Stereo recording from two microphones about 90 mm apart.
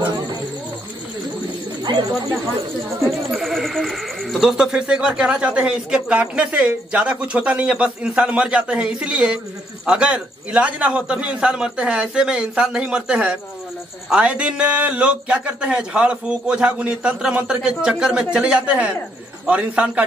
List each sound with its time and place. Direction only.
1.8 s bird: 50° right (ahead or behind)
3.3 s speech: centre (ahead or behind); by 20.1 s 15° right (ahead or behind)